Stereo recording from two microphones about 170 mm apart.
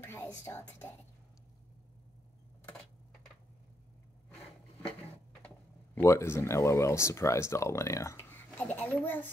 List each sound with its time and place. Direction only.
0.0 s speech: 15° left (ahead or behind)
5.9 s speech: 15° left (ahead or behind)